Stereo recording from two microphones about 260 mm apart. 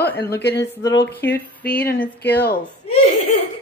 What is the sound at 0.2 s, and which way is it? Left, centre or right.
Speech, left.